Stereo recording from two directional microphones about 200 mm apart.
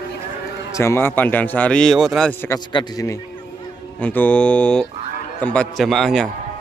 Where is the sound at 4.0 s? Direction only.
10° left (ahead or behind).